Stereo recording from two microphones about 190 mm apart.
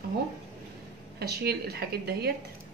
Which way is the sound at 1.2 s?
55° right (ahead or behind).